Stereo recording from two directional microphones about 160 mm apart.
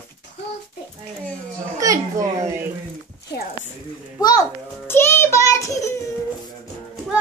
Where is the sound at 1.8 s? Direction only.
20° right (ahead or behind).